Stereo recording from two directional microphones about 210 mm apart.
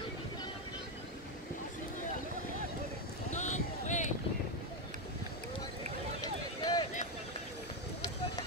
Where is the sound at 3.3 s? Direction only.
35° left (ahead or behind).